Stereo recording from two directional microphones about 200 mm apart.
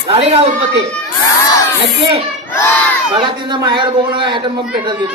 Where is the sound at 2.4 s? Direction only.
10° left (ahead or behind).